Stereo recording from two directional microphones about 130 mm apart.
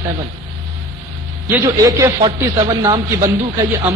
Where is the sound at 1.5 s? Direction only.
20° right (ahead or behind).